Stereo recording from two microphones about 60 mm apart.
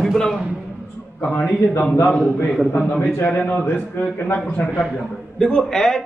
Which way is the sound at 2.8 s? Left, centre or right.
Left.